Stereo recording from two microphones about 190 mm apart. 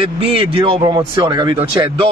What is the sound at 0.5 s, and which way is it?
A man's voice, 25° right (ahead or behind).